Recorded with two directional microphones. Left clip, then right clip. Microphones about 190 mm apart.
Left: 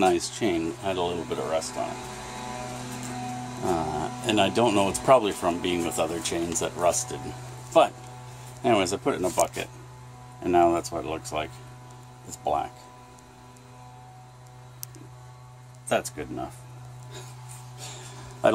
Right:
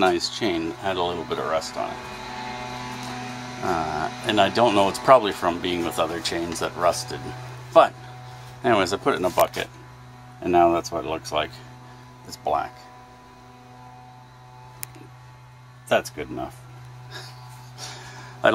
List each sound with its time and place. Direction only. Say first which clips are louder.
0.0 s speech: right 2 dB; centre (ahead or behind)
3.6 s speech: right 2 dB; 10° right (ahead or behind)
3.9 s speech: right 3 dB; 5° left (ahead or behind); by 11.5 s 15° right (ahead or behind)
12.4 s speech: right 3 dB; 10° left (ahead or behind)
15.9 s speech: right 4 dB; 15° right (ahead or behind)
18.4 s speech: right 3 dB; 10° left (ahead or behind)